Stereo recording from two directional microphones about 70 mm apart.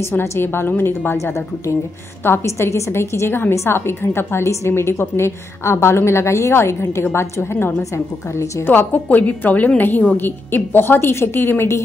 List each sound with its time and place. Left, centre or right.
0.0 s a woman's voice: left
1.1 s a woman's voice: left
8.6 s a woman's voice: left